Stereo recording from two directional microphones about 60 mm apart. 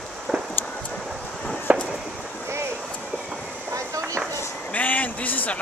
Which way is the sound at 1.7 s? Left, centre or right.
Right.